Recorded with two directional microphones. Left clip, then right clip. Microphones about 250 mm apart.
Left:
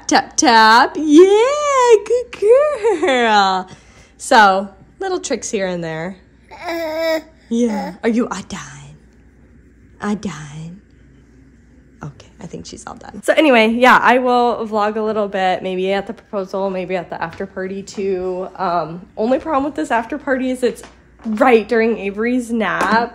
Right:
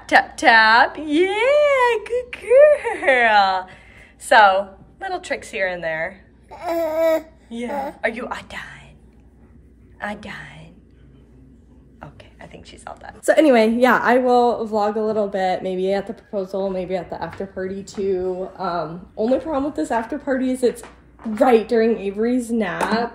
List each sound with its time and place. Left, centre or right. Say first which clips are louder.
0.0 s speech: left 1 dB; left
6.5 s a woman's voice: right 1 dB; centre
8.1 s a woman's voice: left 8 dB; left
10.2 s a woman's voice: left 4 dB; left
12.2 s beatboxing: left 7 dB; left
13.2 s a woman's voice: left 2 dB; centre